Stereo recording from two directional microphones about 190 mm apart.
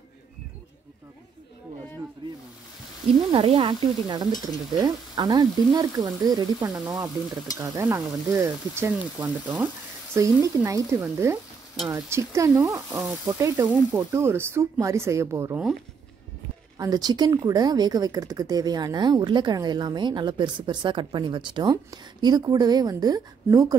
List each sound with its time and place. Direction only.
2.2 s snake: 25° right (ahead or behind)
3.2 s speech: 25° right (ahead or behind)
16.7 s speech: 20° right (ahead or behind)